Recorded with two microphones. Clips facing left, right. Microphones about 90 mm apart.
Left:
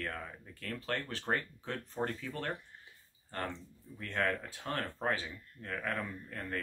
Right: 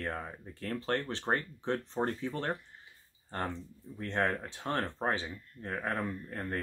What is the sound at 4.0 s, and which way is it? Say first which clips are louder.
Speech: right 2 dB; 30° right (ahead or behind).